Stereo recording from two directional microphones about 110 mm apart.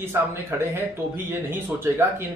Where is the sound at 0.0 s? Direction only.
20° right (ahead or behind).